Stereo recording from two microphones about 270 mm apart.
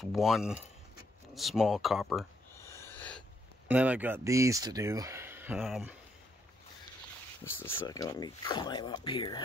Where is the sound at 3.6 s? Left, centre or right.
Centre.